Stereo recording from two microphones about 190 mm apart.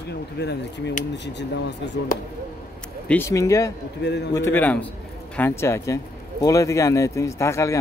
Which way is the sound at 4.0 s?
65° left (ahead or behind).